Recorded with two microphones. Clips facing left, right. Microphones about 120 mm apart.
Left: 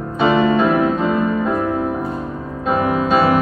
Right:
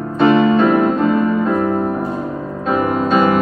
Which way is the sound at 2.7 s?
5° left (ahead or behind).